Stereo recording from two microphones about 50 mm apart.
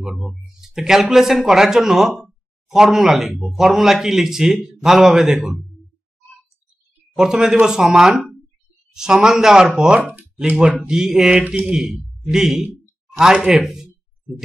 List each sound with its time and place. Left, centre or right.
0.0 s a man's voice: centre
7.2 s a man's voice: centre